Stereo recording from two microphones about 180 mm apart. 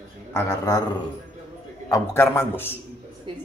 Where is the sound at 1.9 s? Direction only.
15° left (ahead or behind).